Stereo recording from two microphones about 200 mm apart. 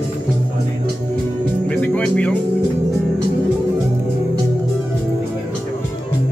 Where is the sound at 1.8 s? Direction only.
5° left (ahead or behind).